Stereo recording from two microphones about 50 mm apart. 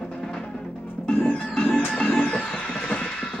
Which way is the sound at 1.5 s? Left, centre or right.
Centre.